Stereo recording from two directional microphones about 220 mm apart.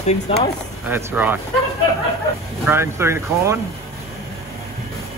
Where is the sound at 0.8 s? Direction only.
10° right (ahead or behind).